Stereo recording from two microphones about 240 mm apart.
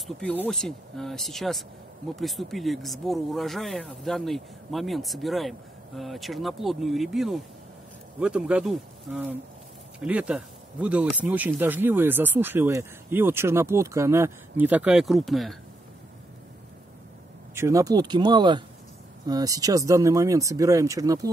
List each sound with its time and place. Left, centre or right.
0.0 s speech: centre
17.6 s speech: centre